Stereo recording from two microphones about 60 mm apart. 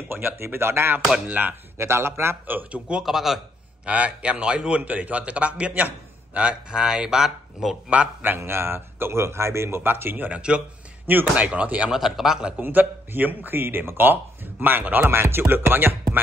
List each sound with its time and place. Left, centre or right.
0.1 s speech: right
1.1 s a man's voice: centre
1.4 s speech: right
1.9 s speech: right
2.4 s speech: right
3.0 s a man's voice: centre
3.8 s a man's voice: right
7.9 s a man's voice: right
8.4 s a man's voice: right
11.9 s speech: centre
12.5 s speech: right
15.0 s speech: right